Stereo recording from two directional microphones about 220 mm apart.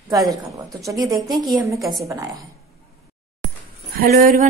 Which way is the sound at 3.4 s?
55° right (ahead or behind).